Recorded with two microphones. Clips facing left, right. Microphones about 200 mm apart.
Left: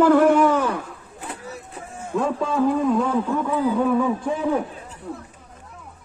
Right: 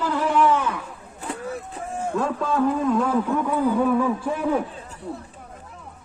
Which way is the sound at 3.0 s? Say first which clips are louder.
Even; 15° right (ahead or behind).